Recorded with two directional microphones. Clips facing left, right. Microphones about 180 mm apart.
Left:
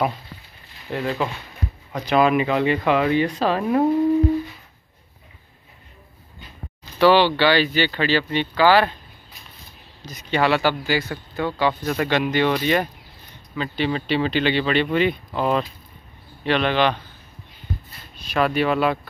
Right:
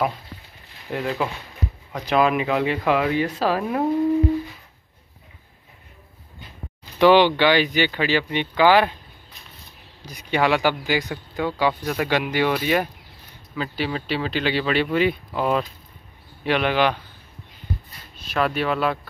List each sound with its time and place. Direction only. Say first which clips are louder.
0.8 s speech: left 1 dB; 10° right (ahead or behind)
7.0 s speech: right 1 dB; 15° right (ahead or behind)
10.0 s speech: even; 10° right (ahead or behind)
18.3 s speech: left 3 dB; centre (ahead or behind)